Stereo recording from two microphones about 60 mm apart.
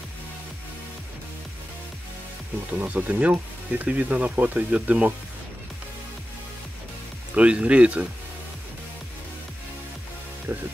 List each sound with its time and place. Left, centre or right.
2.8 s speech: right
7.3 s speech: right
10.5 s speech: right